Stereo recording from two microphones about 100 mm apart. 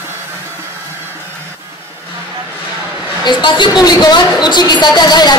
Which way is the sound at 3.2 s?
50° left (ahead or behind).